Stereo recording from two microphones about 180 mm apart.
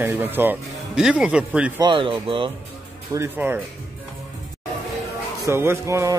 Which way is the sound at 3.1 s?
15° right (ahead or behind).